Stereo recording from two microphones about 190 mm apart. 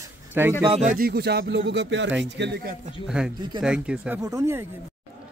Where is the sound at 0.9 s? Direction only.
55° right (ahead or behind).